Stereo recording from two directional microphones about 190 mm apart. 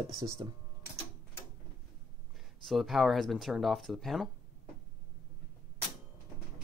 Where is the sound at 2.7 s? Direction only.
Centre (ahead or behind).